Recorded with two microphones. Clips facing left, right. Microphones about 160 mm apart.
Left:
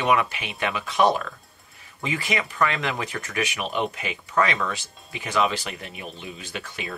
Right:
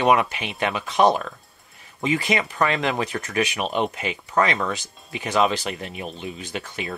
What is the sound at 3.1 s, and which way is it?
Speech, 40° right (ahead or behind).